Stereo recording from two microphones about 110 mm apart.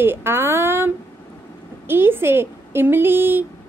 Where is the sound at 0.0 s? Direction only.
20° right (ahead or behind).